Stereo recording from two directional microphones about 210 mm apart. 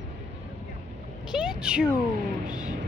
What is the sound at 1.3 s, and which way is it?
Meow, 5° right (ahead or behind).